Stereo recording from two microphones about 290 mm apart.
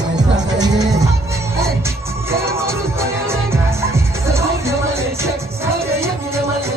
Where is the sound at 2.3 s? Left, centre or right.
Centre.